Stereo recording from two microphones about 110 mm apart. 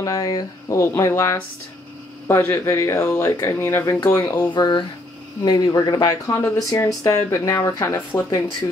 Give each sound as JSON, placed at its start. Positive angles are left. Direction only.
{"t": 0.0, "sound": "speech", "side_deg": 30}